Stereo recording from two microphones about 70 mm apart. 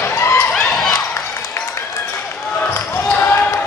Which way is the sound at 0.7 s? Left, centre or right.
Centre.